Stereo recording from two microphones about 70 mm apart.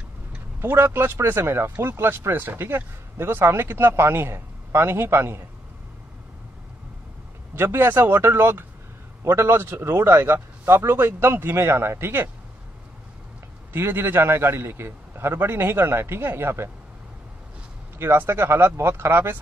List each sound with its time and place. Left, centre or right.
0.6 s speech: right
7.5 s speech: right
13.7 s speech: right
17.9 s speech: right